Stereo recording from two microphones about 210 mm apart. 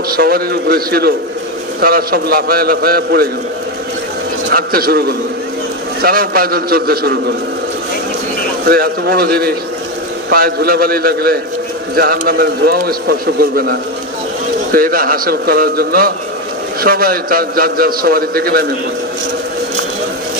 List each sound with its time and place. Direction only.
0.1 s a man's voice: 45° right (ahead or behind)
4.5 s a man's voice: 45° right (ahead or behind)
8.6 s a man's voice: 45° right (ahead or behind)